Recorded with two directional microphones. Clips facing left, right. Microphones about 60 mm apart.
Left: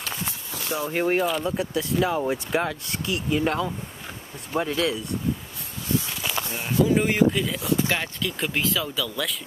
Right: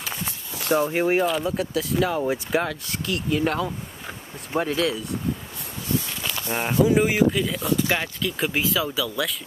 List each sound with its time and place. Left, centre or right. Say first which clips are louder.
0.0 s walk: even; centre
0.8 s speech: right 2 dB; centre
6.5 s speech: right 4 dB; right
6.8 s speech: right 1 dB; centre